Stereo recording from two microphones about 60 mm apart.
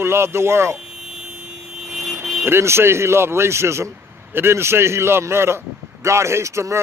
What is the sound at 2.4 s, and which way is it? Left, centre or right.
Speech, right.